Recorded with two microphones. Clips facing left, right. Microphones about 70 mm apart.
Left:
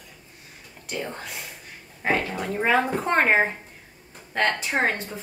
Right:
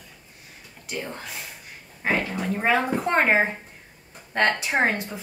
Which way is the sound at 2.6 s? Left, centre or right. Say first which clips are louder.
Left 1 dB; centre.